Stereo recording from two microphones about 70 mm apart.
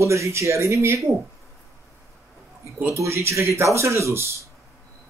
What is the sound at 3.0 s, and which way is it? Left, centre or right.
Speech, right.